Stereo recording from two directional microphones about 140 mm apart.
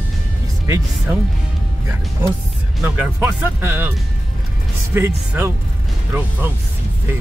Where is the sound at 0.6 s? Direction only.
20° right (ahead or behind).